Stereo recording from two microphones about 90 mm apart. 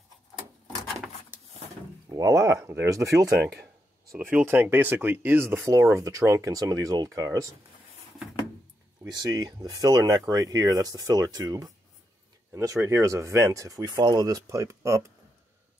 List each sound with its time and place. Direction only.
2.0 s speech: 40° right (ahead or behind)
4.1 s speech: 25° right (ahead or behind); by 7.4 s 40° right (ahead or behind)
9.0 s speech: 45° right (ahead or behind)